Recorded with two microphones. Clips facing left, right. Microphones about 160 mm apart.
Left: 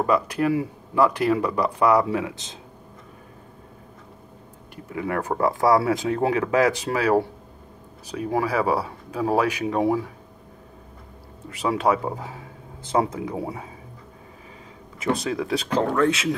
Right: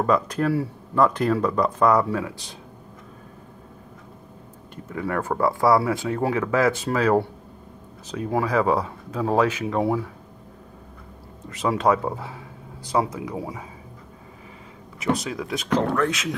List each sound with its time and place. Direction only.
0.0 s speech: 10° left (ahead or behind)
4.9 s speech: 15° left (ahead or behind)
8.3 s speech: 10° left (ahead or behind)
11.5 s speech: 10° left (ahead or behind)
12.8 s speech: 25° left (ahead or behind)
15.1 s speech: 25° left (ahead or behind)